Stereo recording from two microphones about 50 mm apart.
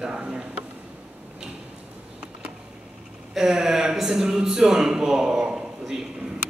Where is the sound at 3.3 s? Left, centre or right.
Centre.